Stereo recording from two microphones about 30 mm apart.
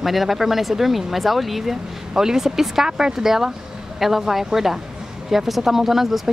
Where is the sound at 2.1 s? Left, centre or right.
Centre.